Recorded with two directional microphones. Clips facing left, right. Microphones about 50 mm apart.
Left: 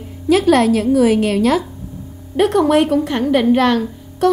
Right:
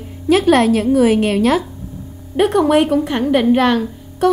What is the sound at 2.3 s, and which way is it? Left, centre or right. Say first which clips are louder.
A woman's voice: even; centre.